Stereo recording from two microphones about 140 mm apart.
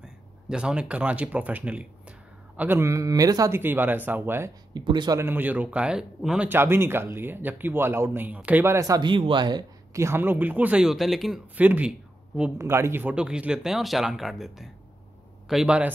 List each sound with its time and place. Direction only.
0.5 s speech: 5° right (ahead or behind)
4.7 s speech: 30° right (ahead or behind)
5.2 s speech: 15° right (ahead or behind); by 9.7 s 30° right (ahead or behind)
9.9 s speech: 15° right (ahead or behind); by 11.4 s centre (ahead or behind)
11.5 s speech: 10° right (ahead or behind)